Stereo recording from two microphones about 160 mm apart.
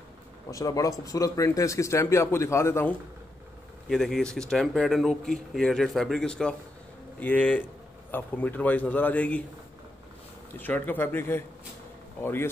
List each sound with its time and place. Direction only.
0.5 s speech: 20° left (ahead or behind)
3.9 s a man's voice: centre (ahead or behind)
10.6 s a man's voice: 10° left (ahead or behind)